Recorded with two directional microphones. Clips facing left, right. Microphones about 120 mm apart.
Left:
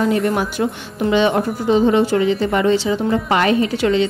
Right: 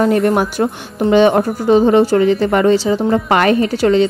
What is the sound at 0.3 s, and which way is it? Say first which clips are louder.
A woman's voice: right 4 dB; 50° right (ahead or behind).